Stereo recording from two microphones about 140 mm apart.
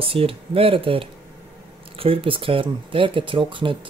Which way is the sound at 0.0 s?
40° right (ahead or behind).